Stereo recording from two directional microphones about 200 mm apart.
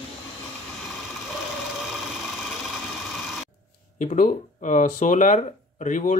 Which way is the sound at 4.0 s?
40° left (ahead or behind).